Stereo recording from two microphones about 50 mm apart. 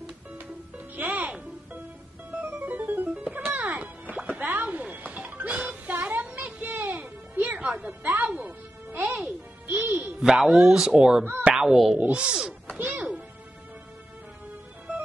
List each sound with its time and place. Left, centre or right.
0.9 s music: right
2.3 s music: right
10.2 s speech: centre
11.4 s a sound: centre
11.7 s speech: centre
12.0 s speech: right
12.7 s music: right